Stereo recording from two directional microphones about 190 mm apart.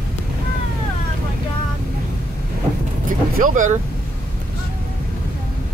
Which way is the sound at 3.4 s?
40° right (ahead or behind).